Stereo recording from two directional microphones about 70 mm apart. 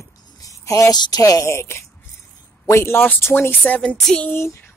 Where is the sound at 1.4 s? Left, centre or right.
Left.